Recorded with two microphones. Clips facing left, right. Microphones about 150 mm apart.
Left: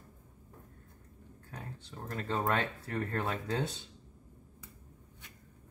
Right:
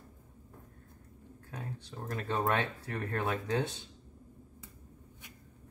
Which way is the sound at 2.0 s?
10° right (ahead or behind).